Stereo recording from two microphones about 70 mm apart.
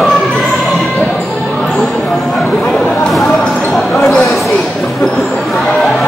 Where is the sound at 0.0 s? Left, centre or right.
Centre.